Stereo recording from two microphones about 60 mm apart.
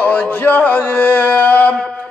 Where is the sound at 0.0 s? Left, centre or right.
Left.